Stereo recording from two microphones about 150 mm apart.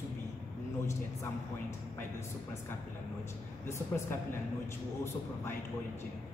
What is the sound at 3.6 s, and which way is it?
Speech, 15° left (ahead or behind).